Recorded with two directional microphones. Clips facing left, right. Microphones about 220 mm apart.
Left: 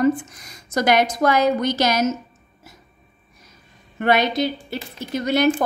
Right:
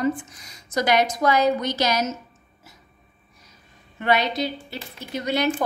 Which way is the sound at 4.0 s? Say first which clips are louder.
Left 4 dB; 45° left (ahead or behind).